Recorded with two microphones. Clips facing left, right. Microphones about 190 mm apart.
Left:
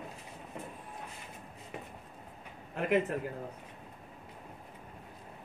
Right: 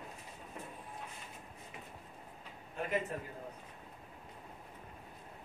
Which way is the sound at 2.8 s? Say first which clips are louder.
Left 7 dB; 90° left.